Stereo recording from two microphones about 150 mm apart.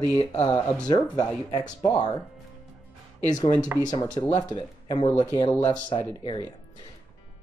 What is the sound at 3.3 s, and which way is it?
Speech, 25° left (ahead or behind).